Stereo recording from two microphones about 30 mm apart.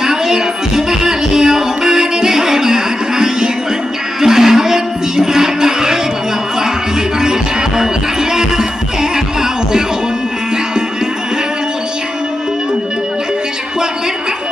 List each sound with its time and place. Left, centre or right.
0.0 s music: centre
7.2 s music: right